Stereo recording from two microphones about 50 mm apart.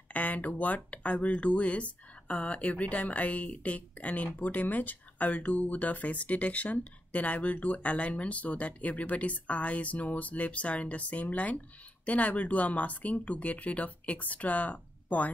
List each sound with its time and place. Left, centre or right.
0.1 s speech: left